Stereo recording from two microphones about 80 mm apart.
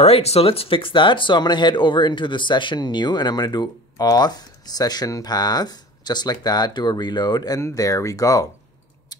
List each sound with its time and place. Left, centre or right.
0.7 s speech: left
7.6 s speech: left